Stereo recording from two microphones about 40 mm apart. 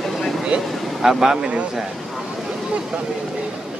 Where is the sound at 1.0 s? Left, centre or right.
Centre.